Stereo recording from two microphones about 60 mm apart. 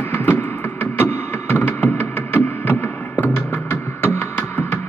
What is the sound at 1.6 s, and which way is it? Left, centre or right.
Music, left.